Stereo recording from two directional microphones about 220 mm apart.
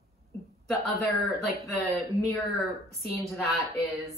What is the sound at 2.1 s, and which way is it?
Speech, 15° right (ahead or behind).